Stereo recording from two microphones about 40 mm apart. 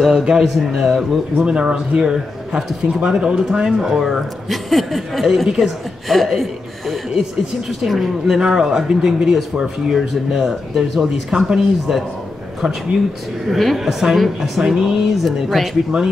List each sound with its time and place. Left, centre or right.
0.0 s speech: centre
1.4 s speech: right
2.0 s speech: centre
13.5 s speech: centre
13.7 s speech: centre
15.9 s speech: centre